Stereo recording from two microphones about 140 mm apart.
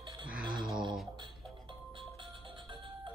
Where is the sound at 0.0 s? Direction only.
35° right (ahead or behind).